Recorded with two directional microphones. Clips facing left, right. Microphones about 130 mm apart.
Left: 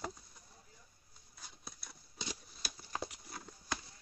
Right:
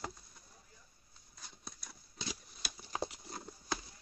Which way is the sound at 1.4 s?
5° left (ahead or behind).